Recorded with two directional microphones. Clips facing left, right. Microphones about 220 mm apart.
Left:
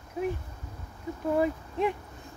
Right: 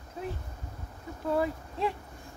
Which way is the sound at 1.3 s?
20° left (ahead or behind).